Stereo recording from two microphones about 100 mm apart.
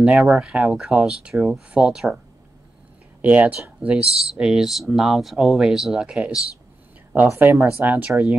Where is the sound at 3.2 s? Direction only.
15° right (ahead or behind).